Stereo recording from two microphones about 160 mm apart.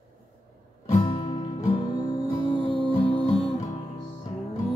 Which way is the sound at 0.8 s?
35° left (ahead or behind).